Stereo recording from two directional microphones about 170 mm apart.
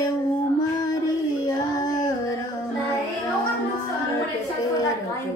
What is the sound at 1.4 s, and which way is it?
Child singing, 20° left (ahead or behind).